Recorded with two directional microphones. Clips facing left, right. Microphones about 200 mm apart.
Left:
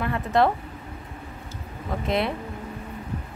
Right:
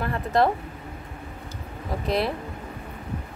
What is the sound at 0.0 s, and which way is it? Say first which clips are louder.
Speech: left 1 dB; centre (ahead or behind).